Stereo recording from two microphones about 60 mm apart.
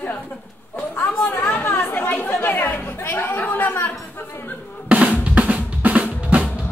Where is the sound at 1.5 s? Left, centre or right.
Left.